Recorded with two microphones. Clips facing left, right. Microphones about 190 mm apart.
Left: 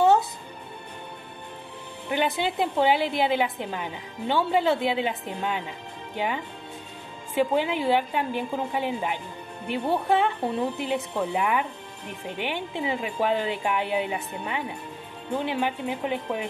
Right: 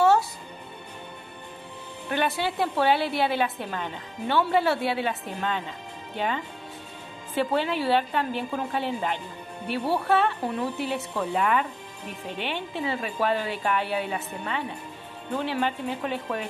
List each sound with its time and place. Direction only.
2.0 s a woman's voice: 15° left (ahead or behind)